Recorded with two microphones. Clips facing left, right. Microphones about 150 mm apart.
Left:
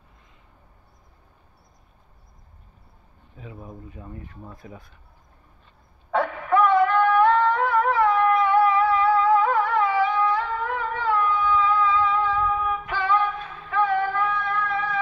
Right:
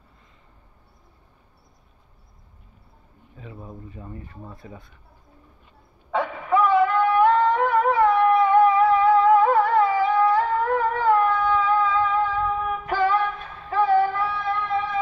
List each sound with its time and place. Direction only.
3.3 s speech: centre (ahead or behind)
6.1 s singing: centre (ahead or behind); by 13.2 s 40° right (ahead or behind)
13.7 s music: 35° right (ahead or behind)